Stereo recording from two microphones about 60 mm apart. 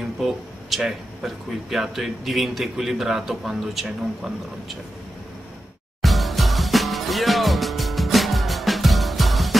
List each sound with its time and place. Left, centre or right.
0.2 s speech: centre
6.0 s music: centre